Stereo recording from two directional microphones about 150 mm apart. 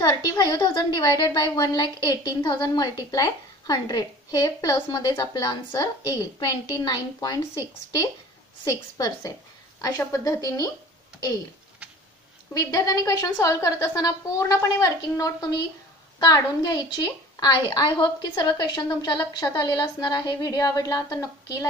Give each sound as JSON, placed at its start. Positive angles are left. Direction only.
{"t": 0.0, "sound": "a woman's voice", "side_deg": 30}
{"t": 12.5, "sound": "a woman's voice", "side_deg": 25}